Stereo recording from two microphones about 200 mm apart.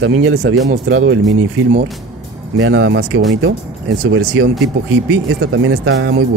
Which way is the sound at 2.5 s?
70° right (ahead or behind).